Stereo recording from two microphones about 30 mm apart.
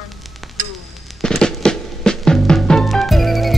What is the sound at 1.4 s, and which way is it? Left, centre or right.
Music, left.